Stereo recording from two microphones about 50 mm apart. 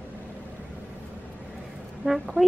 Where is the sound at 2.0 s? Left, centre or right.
Right.